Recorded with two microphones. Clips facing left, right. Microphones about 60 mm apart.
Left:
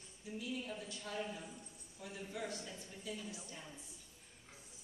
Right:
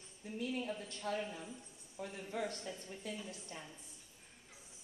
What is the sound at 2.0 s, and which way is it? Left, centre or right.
A woman's voice, right.